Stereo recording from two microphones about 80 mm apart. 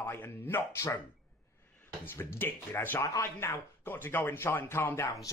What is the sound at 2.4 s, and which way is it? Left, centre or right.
Speech, left.